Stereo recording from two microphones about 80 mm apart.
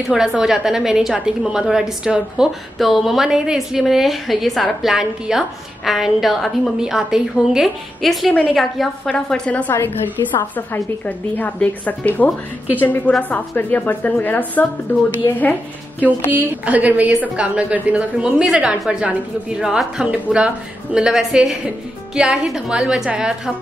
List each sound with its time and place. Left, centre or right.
0.1 s a woman's voice: centre
9.1 s a woman's voice: centre
9.7 s a woman's voice: left
16.3 s a woman's voice: right